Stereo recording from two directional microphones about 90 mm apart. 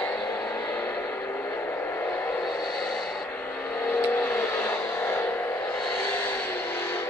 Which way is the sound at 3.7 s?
20° left (ahead or behind).